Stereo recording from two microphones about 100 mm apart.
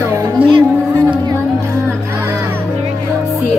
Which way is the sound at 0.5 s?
45° right (ahead or behind).